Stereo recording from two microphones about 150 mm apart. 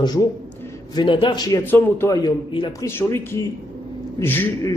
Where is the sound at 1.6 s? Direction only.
15° left (ahead or behind).